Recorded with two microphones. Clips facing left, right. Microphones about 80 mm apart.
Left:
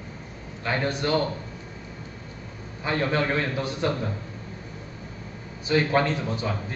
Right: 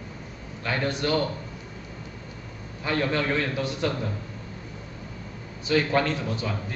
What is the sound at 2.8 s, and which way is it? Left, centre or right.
A man's voice, left.